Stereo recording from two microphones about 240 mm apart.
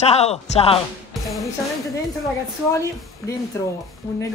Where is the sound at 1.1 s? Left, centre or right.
Centre.